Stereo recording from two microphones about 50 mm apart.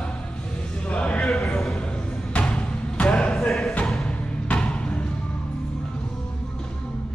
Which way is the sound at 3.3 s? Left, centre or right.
Centre.